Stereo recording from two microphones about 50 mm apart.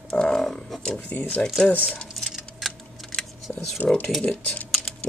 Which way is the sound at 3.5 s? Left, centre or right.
Left.